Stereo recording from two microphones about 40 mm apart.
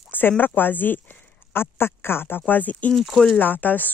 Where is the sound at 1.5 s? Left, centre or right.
Left.